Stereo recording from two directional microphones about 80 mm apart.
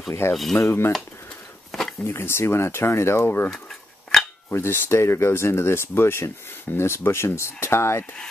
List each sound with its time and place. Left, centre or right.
0.2 s cutlery: left
1.7 s a sound: centre
2.0 s speech: left
4.1 s cutlery: centre
4.5 s speech: left